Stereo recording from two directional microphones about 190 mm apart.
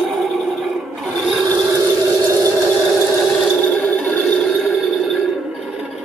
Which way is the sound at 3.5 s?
5° left (ahead or behind).